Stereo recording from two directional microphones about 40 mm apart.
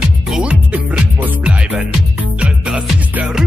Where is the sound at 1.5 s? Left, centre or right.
Right.